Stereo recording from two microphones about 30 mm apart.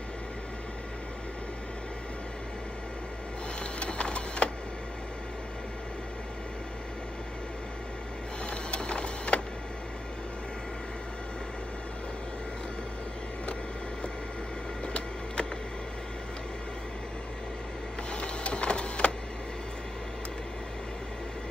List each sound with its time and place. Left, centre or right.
3.8 s printer: left
8.5 s printer: left
14.9 s a sound: left
18.1 s printer: left